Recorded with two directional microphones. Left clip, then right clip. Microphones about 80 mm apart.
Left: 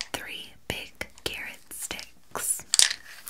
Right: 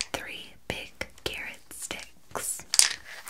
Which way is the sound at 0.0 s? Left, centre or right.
Centre.